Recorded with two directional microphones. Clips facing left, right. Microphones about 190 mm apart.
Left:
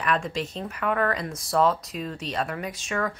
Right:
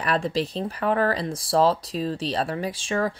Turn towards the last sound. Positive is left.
turn(degrees=-30)  # may be behind; listen again after turning